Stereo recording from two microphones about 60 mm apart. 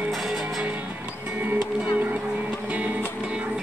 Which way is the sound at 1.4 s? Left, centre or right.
Right.